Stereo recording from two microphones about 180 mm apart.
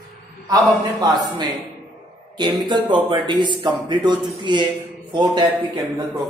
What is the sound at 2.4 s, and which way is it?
A man's voice, 25° right (ahead or behind).